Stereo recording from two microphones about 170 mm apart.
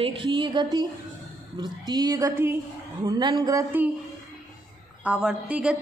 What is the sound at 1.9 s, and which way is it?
A woman's voice, 20° right (ahead or behind).